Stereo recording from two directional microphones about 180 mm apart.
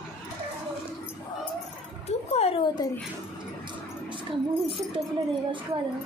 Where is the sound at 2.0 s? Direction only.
35° left (ahead or behind).